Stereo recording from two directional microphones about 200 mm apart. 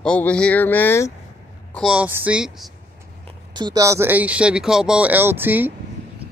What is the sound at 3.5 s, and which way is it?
Speech, 20° right (ahead or behind).